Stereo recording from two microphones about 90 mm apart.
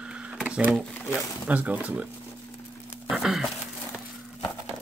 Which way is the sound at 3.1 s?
5° right (ahead or behind).